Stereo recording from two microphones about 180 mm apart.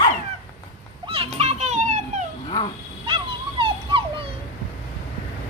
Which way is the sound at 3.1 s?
30° right (ahead or behind).